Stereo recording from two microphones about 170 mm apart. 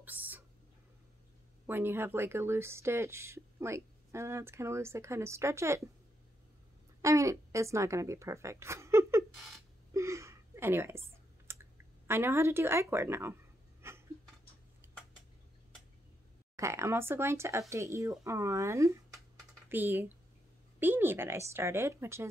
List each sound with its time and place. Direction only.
0.0 s a sound: 10° right (ahead or behind)
1.7 s speech: 10° right (ahead or behind)
7.0 s speech: 20° right (ahead or behind)
9.9 s computer keyboard: 15° right (ahead or behind)
12.1 s speech: 15° right (ahead or behind)
13.8 s a sound: 15° right (ahead or behind)
16.5 s speech: 15° right (ahead or behind)